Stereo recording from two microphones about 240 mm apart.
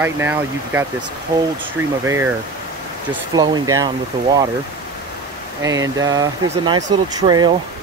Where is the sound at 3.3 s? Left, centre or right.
Centre.